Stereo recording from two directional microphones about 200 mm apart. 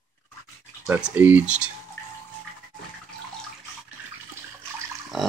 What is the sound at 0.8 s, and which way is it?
Speech, 10° right (ahead or behind).